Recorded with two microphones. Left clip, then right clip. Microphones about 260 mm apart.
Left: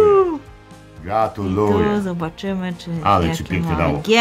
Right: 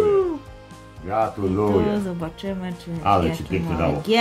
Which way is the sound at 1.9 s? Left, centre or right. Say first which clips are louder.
Left 4 dB; centre.